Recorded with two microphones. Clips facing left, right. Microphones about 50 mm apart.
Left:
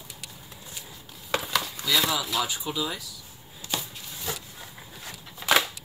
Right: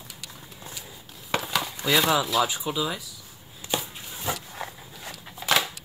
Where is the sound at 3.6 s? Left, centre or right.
Centre.